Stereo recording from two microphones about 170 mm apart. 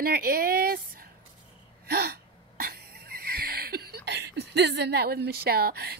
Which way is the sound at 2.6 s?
65° right (ahead or behind).